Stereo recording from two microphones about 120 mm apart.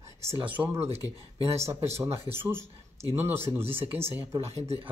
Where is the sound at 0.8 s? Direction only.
60° right (ahead or behind).